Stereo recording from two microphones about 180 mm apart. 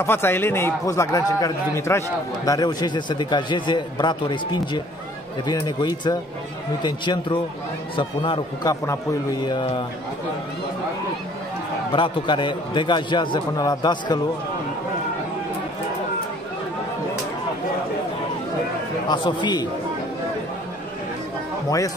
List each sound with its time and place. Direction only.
0.0 s a man's voice: 10° left (ahead or behind)
11.9 s a man's voice: 25° left (ahead or behind)
19.0 s a man's voice: 25° left (ahead or behind)
21.6 s a man's voice: 20° left (ahead or behind)